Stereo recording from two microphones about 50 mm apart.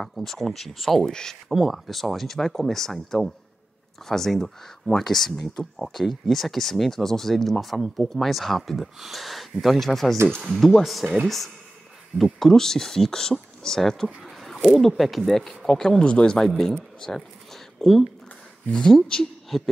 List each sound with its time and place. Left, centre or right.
0.1 s speech: centre; by 16.3 s left
16.3 s speech: centre
19.1 s speech: centre
19.5 s speech: centre